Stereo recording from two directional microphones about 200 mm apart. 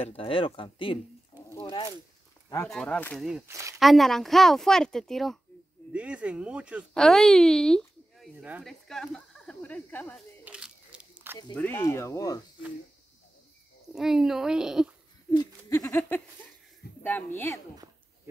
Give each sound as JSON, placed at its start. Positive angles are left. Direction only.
{"t": 0.0, "sound": "speech", "side_deg": 30}
{"t": 1.5, "sound": "a sound", "side_deg": 20}
{"t": 2.7, "sound": "speech", "side_deg": 5}
{"t": 3.4, "sound": "speech", "side_deg": -15}
{"t": 3.8, "sound": "speech", "side_deg": 0}
{"t": 10.4, "sound": "a sound", "side_deg": -5}
{"t": 11.5, "sound": "speech", "side_deg": 10}
{"t": 13.9, "sound": "speech", "side_deg": 0}
{"t": 15.3, "sound": "owl", "side_deg": 15}
{"t": 17.0, "sound": "speech", "side_deg": 10}